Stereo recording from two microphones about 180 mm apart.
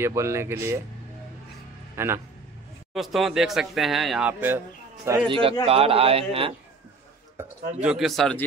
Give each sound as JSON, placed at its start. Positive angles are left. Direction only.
{"t": 0.0, "sound": "speech", "side_deg": -15}
{"t": 2.0, "sound": "a man's voice", "side_deg": -15}
{"t": 2.9, "sound": "speech", "side_deg": 0}
{"t": 5.3, "sound": "speech", "side_deg": -30}
{"t": 7.4, "sound": "speech", "side_deg": -15}